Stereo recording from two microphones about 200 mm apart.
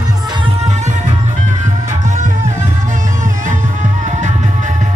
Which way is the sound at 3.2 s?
35° right (ahead or behind).